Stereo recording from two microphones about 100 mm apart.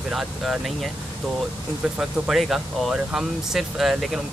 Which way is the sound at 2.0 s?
5° right (ahead or behind).